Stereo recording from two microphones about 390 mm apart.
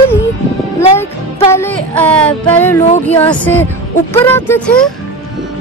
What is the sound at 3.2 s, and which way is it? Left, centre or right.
Music, centre.